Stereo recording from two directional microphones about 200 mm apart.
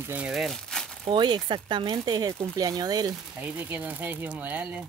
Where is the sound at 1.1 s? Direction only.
25° right (ahead or behind); by 4.6 s 10° right (ahead or behind).